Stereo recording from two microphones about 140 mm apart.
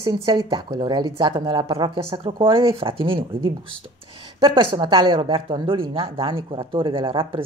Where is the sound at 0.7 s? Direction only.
35° right (ahead or behind).